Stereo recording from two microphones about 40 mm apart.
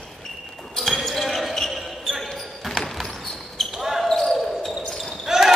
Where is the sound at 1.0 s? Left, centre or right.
Centre.